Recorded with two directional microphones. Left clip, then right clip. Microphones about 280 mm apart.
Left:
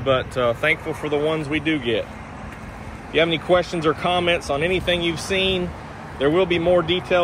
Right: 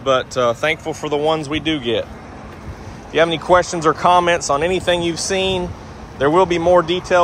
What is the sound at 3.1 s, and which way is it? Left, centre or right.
Speech, right.